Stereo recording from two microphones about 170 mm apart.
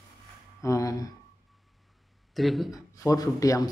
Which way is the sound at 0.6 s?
20° left (ahead or behind).